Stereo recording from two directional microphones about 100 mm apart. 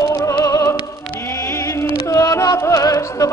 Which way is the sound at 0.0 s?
30° left (ahead or behind).